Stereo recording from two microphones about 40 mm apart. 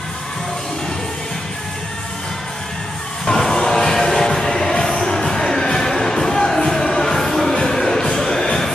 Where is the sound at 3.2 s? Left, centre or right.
Centre.